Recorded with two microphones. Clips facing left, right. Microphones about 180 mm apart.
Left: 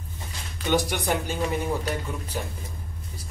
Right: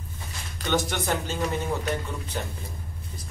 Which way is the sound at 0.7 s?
15° left (ahead or behind).